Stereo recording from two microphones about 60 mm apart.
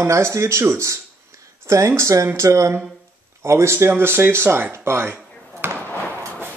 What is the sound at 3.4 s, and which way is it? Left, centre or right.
Speech, right.